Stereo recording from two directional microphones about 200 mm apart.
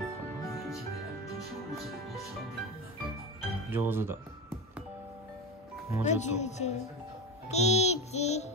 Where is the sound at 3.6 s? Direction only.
10° right (ahead or behind).